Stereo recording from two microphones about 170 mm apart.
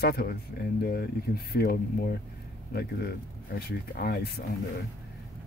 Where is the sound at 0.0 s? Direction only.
65° left (ahead or behind).